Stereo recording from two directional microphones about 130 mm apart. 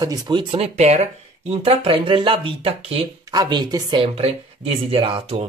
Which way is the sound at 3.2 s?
30° right (ahead or behind).